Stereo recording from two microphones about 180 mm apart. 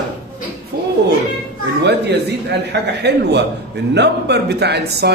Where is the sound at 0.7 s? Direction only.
70° right (ahead or behind).